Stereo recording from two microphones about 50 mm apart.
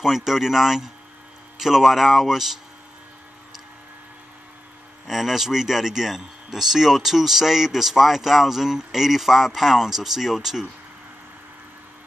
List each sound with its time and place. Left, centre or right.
0.0 s speech: centre
5.0 s speech: centre